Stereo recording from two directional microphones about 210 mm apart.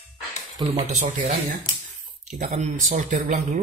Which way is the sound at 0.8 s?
35° right (ahead or behind).